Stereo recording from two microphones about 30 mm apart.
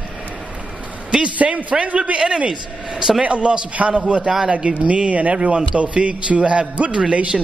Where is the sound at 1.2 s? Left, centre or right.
Right.